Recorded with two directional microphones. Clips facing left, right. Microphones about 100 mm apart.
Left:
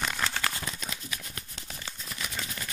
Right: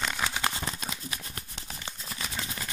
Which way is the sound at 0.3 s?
20° right (ahead or behind).